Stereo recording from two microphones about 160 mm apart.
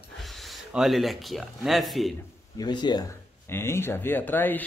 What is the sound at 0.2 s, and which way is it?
Speech, centre (ahead or behind).